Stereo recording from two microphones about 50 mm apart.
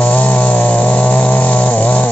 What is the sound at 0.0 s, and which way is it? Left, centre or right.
Chainsaw, left.